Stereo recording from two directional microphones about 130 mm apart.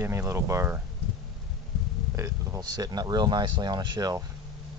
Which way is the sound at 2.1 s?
20° right (ahead or behind).